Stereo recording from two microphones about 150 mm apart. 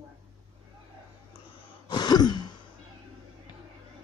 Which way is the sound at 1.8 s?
25° left (ahead or behind).